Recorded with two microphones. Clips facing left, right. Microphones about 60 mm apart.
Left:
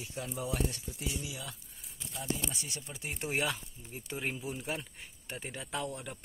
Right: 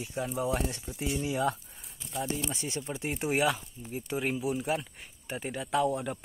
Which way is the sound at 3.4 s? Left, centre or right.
Centre.